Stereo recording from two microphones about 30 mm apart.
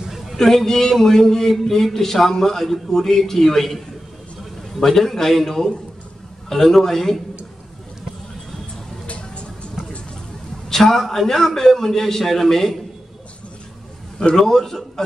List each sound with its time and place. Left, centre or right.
0.4 s a man's voice: centre
9.0 s vehicle: left
10.7 s a man's voice: centre
14.3 s a man's voice: centre